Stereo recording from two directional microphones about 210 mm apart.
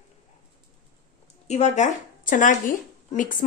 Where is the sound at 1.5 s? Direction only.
35° left (ahead or behind).